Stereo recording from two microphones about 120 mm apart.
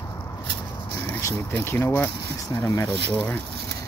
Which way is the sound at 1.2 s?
20° left (ahead or behind).